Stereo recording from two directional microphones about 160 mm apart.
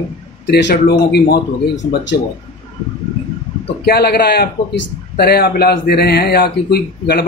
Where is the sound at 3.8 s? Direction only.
90° left.